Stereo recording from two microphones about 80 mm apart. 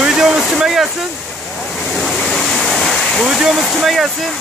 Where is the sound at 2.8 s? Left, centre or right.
Centre.